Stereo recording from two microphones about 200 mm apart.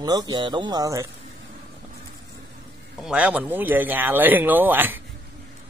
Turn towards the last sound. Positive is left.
turn(degrees=-10)  # may be behind; listen again after turning